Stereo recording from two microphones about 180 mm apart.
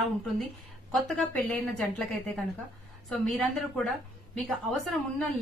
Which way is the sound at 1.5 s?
5° left (ahead or behind).